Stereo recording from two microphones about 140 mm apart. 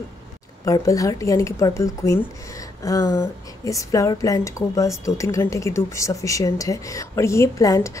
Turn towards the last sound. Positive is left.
turn(degrees=25)  # may be behind; listen again after turning